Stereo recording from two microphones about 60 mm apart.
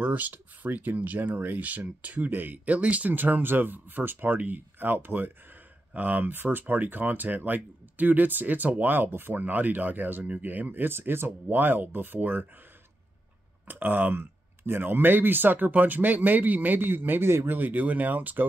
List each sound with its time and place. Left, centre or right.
0.0 s speech: right
13.7 s speech: right